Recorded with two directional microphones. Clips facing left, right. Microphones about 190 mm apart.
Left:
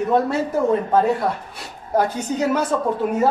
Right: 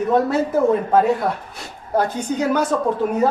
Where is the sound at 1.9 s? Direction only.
10° left (ahead or behind).